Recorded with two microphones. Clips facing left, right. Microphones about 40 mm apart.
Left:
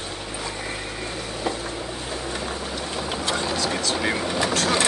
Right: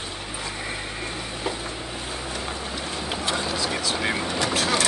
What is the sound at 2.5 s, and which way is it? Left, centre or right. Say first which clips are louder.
Vehicle: left 1 dB; centre.